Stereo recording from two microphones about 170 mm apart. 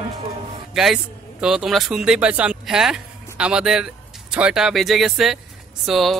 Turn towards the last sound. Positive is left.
turn(degrees=0)  # may be behind; listen again after turning